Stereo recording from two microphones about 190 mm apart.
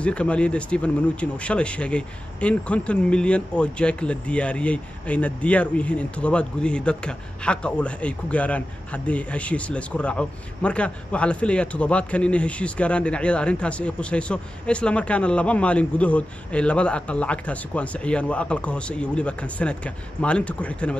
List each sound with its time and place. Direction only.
0.0 s speech: 5° left (ahead or behind)